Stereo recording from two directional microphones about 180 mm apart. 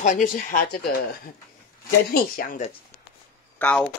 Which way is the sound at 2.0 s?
55° left (ahead or behind).